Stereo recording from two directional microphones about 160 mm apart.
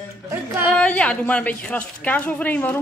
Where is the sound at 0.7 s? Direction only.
5° left (ahead or behind).